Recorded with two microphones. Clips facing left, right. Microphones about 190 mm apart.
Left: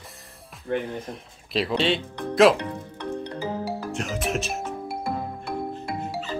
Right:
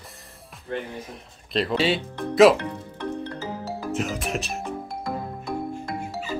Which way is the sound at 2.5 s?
15° left (ahead or behind).